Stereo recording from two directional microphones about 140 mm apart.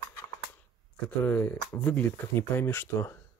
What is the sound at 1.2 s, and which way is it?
Speech, 10° left (ahead or behind).